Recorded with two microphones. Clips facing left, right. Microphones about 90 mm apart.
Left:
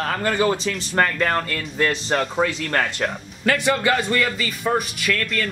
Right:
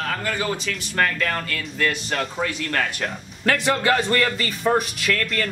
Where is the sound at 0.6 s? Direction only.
25° left (ahead or behind).